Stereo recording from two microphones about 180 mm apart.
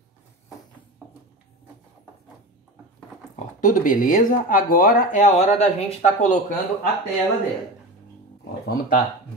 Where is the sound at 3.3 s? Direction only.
45° left (ahead or behind).